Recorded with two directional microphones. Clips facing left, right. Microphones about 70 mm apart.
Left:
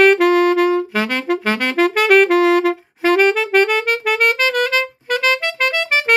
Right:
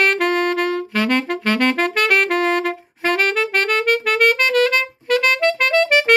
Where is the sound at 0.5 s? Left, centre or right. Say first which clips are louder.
Left 5 dB; centre.